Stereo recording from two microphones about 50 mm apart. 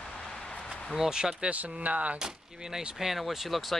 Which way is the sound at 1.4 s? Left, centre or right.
Right.